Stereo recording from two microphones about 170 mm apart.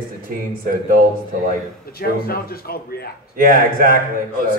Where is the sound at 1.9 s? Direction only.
60° left (ahead or behind).